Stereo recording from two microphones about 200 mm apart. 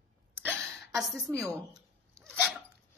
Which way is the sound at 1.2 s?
15° right (ahead or behind).